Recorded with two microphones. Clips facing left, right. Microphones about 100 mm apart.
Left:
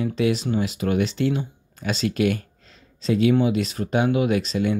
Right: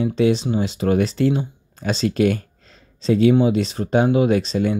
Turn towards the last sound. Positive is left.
turn(degrees=-35)  # may be behind; listen again after turning